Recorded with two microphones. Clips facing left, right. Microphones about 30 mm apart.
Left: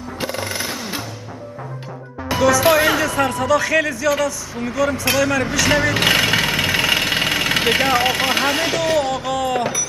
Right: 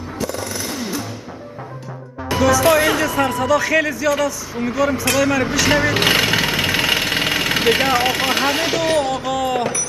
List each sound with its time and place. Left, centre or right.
0.2 s music: left
2.2 s music: centre
2.6 s a man's voice: centre
9.6 s a sound: centre